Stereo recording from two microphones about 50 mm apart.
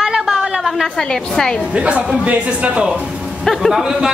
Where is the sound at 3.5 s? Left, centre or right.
Centre.